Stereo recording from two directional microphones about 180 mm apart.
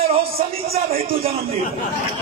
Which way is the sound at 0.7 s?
35° right (ahead or behind).